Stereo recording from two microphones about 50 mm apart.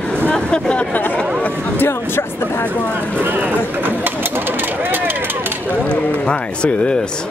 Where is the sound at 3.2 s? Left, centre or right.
Right.